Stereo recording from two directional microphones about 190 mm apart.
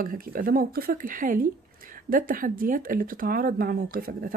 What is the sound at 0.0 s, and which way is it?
Speech, 50° right (ahead or behind).